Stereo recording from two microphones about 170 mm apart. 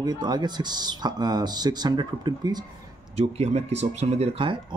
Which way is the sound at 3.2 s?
35° right (ahead or behind).